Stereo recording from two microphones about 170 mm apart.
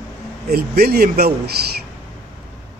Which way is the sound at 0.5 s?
65° right (ahead or behind).